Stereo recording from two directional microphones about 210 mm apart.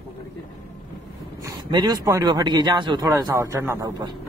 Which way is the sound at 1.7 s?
20° right (ahead or behind).